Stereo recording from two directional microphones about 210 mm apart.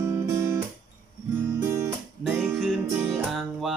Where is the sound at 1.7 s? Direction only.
10° right (ahead or behind).